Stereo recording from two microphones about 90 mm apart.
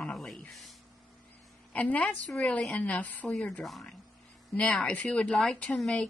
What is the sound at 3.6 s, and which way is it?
Speech, centre (ahead or behind).